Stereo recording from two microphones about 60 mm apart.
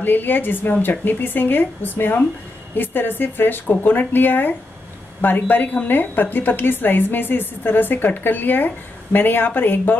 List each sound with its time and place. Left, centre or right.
0.0 s a woman's voice: left